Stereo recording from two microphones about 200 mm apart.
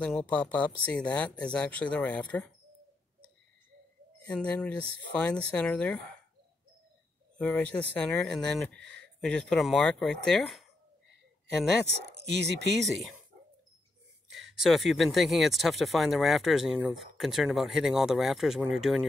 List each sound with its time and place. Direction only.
0.0 s speech: 5° left (ahead or behind)
4.3 s speech: 5° left (ahead or behind)
7.3 s speech: 5° left (ahead or behind)
8.7 s a sound: 60° right (ahead or behind)
9.2 s speech: centre (ahead or behind)
12.3 s speech: 60° right (ahead or behind)
14.6 s speech: centre (ahead or behind)